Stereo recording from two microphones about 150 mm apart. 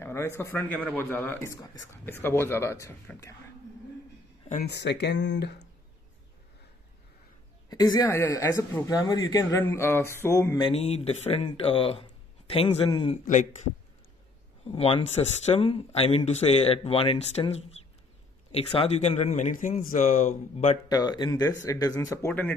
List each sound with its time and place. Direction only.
0.0 s a sound: 15° left (ahead or behind)
0.4 s speech: 15° left (ahead or behind)
4.5 s speech: 75° left (ahead or behind)
7.7 s speech: 25° left (ahead or behind)
10.6 s speech: 40° left (ahead or behind)
14.7 s speech: 40° left (ahead or behind)
20.9 s speech: 30° left (ahead or behind)